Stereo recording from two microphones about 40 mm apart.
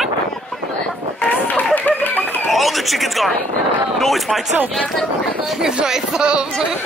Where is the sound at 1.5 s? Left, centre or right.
Left.